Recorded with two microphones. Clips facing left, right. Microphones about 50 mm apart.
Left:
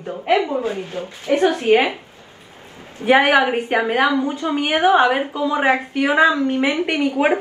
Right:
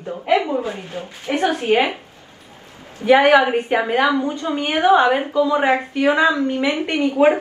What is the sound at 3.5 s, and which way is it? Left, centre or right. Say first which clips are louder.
Speech: even; left.